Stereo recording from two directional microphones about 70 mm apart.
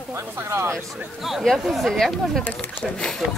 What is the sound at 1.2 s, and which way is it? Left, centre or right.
Speech, centre.